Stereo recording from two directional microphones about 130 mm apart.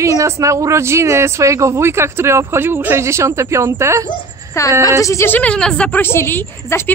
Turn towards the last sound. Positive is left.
turn(degrees=15)  # may be behind; listen again after turning